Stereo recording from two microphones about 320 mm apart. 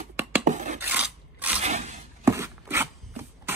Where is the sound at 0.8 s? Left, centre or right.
Centre.